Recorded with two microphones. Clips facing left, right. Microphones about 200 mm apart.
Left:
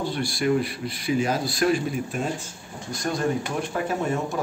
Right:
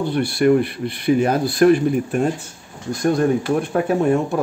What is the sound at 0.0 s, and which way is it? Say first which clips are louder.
Speech: right 8 dB; 60° right (ahead or behind).